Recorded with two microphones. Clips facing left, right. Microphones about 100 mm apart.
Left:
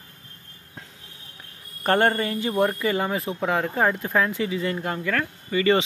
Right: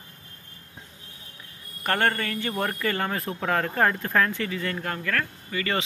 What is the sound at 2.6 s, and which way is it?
Speech, 10° left (ahead or behind).